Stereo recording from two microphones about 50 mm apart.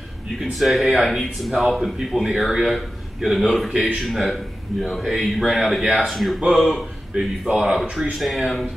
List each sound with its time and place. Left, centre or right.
0.4 s speech: centre
6.4 s speech: centre